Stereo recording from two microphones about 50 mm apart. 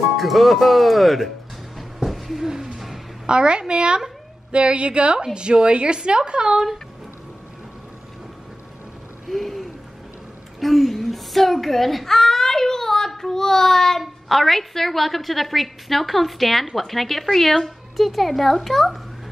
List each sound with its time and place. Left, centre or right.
0.2 s a woman's voice: centre
1.8 s a sound: centre
3.3 s a woman's voice: centre
9.3 s hoot: centre
10.6 s baby cry: centre
14.0 s a woman's voice: centre